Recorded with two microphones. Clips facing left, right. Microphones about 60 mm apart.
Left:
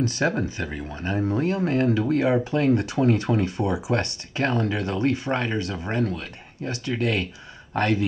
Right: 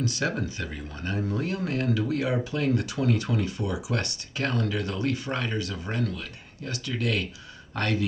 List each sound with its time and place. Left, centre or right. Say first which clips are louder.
0.0 s speech: left 5 dB; left